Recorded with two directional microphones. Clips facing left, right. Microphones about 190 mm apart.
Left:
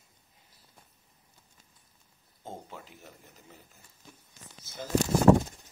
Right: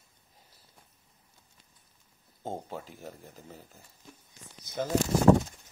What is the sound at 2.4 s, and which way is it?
Speech, 35° right (ahead or behind).